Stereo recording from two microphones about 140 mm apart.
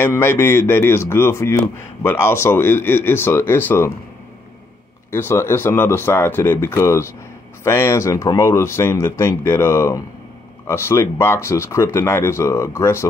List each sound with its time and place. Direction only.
0.0 s speech: 15° left (ahead or behind)
5.1 s speech: 15° left (ahead or behind)